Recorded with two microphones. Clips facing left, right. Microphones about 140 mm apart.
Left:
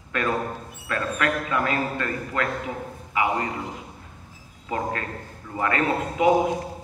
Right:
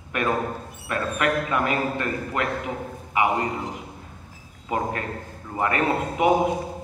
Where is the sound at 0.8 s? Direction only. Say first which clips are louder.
Right 1 dB; 20° right (ahead or behind).